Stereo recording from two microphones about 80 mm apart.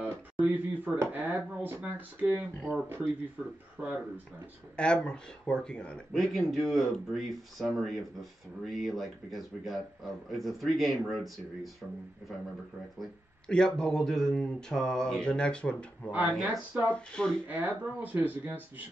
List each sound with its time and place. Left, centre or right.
0.0 s a sound: centre
0.9 s speech: right
2.7 s speech: centre
3.4 s speech: centre
4.7 s speech: centre
6.1 s speech: centre
13.5 s speech: centre
16.1 s speech: right
16.9 s speech: centre
17.5 s speech: right